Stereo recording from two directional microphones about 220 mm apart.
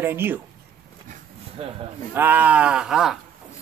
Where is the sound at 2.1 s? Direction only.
10° right (ahead or behind).